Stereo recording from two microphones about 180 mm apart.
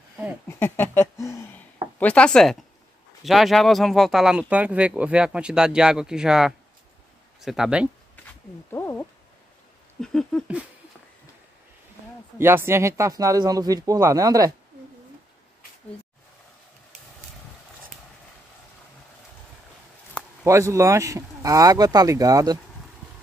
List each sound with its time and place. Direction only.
0.5 s a sound: 10° left (ahead or behind)
2.0 s speech: 5° left (ahead or behind)
8.6 s speech: 10° left (ahead or behind)
12.4 s speech: 15° right (ahead or behind)
20.4 s speech: 15° right (ahead or behind)